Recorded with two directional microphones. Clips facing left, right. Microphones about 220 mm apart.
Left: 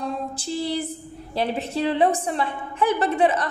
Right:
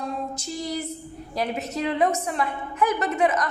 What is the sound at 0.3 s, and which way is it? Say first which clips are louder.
A woman's voice: left 4 dB; 30° left (ahead or behind).